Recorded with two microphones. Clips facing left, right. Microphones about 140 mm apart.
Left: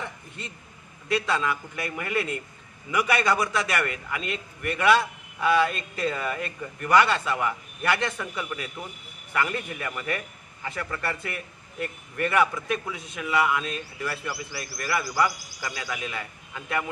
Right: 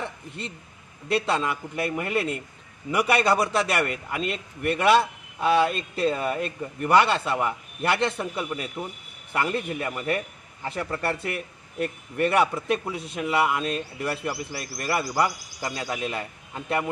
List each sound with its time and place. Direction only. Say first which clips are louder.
1.1 s a man's voice: right 1 dB; 30° right (ahead or behind)